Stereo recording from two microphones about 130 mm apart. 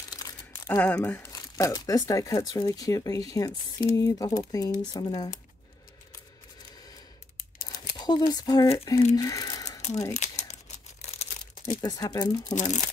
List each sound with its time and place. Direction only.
0.7 s speech: 15° left (ahead or behind)
1.3 s speech: 25° left (ahead or behind)
8.0 s speech: 35° left (ahead or behind)
9.1 s a sound: 25° left (ahead or behind)
10.1 s crumpling: 60° left (ahead or behind)
11.8 s speech: 30° left (ahead or behind)
12.5 s speech: 65° left (ahead or behind)